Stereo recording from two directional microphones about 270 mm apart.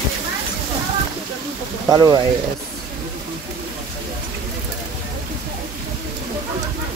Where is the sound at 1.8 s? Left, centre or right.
Centre.